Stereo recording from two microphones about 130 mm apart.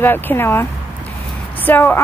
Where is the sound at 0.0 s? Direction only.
15° left (ahead or behind).